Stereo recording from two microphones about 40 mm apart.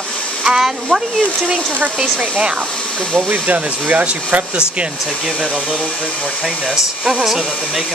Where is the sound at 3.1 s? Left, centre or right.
Right.